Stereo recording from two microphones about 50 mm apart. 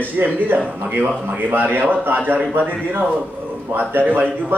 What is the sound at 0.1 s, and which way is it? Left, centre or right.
Speech, right.